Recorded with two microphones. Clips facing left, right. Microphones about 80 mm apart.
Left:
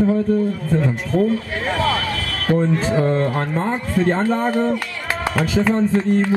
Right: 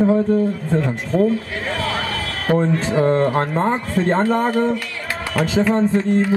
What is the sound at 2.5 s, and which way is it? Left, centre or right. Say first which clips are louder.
Speech: even; right.